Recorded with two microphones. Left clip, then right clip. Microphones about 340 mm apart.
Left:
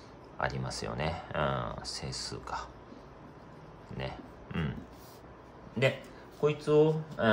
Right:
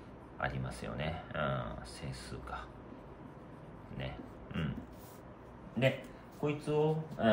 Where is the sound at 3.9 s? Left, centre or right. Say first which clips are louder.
Left 5 dB; centre.